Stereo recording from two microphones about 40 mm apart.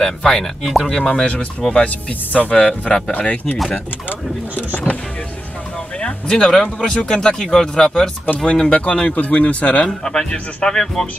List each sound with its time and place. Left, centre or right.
0.0 s speech: centre
0.8 s speech: centre
1.9 s speech: left
5.9 s speech: left
8.6 s speech: left
9.8 s speech: centre